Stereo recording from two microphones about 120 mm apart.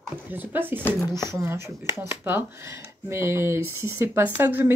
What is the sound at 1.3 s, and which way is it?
Speech, 25° right (ahead or behind).